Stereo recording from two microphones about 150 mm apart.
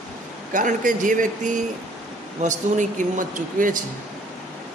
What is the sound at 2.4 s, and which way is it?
A woman's voice, 55° right (ahead or behind).